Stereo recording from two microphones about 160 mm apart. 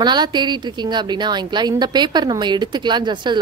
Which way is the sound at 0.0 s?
25° right (ahead or behind).